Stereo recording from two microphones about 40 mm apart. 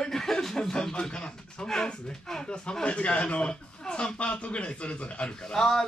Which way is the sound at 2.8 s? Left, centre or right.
Left.